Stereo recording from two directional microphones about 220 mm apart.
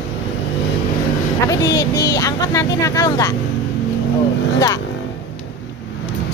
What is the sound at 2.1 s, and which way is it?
Speech, 15° left (ahead or behind).